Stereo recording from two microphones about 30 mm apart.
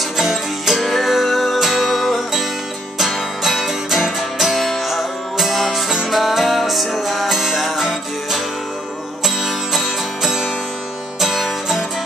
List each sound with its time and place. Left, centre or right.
0.2 s music: centre
3.4 s music: centre